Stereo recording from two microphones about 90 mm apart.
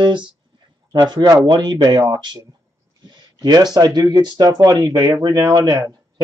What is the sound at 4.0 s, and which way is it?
Speech, 45° right (ahead or behind).